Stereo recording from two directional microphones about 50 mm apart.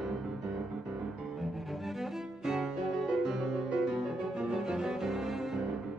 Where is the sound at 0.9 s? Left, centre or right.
Centre.